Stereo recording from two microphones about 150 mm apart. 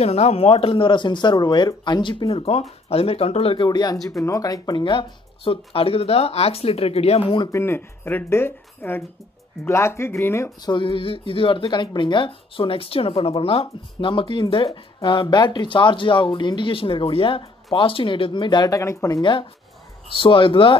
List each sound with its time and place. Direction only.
0.0 s speech: 45° left (ahead or behind)
7.5 s speech: 15° left (ahead or behind)
10.7 s speech: 35° left (ahead or behind)
20.1 s speech: 35° left (ahead or behind)